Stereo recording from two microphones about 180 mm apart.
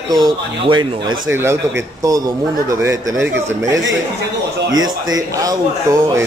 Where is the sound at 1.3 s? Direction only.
15° right (ahead or behind).